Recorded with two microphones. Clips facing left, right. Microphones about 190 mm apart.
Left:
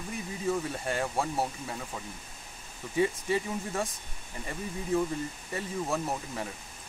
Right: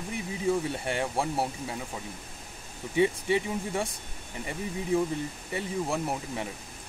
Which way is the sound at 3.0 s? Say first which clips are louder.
Right 3 dB; 20° right (ahead or behind).